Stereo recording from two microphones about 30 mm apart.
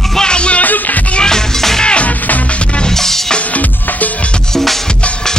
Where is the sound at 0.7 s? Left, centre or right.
Left.